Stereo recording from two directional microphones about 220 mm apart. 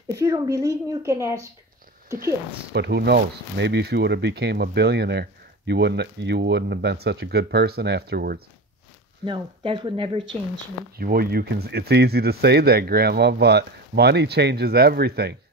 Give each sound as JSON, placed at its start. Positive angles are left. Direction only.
{"t": 0.1, "sound": "a woman's voice", "side_deg": -15}
{"t": 2.1, "sound": "speech", "side_deg": -45}
{"t": 9.2, "sound": "speech", "side_deg": -20}
{"t": 11.0, "sound": "speech", "side_deg": -45}